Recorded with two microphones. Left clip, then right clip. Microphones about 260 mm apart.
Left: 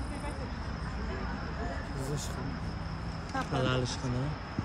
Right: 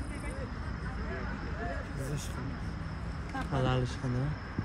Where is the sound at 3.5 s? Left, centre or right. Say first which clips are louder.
Even; centre.